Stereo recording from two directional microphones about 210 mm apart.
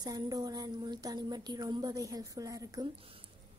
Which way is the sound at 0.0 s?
20° right (ahead or behind).